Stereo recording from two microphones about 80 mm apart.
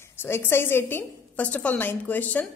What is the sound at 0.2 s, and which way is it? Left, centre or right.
A woman's voice, left.